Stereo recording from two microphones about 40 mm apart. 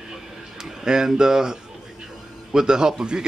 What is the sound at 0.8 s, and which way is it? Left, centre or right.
A man's voice, centre.